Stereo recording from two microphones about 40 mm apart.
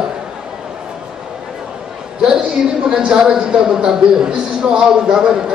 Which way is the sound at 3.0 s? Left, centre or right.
Right.